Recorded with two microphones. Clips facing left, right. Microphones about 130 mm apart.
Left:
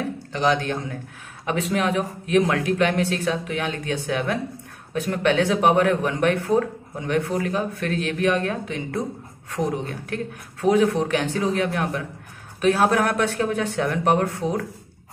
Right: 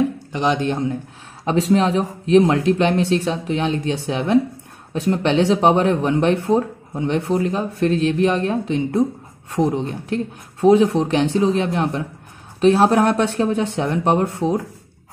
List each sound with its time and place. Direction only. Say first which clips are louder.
0.3 s speech: right 2 dB; 20° right (ahead or behind)